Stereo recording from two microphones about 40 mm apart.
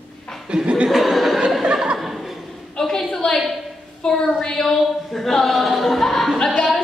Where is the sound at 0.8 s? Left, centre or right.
Centre.